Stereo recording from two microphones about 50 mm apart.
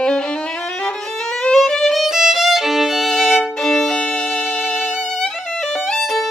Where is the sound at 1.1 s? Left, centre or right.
Centre.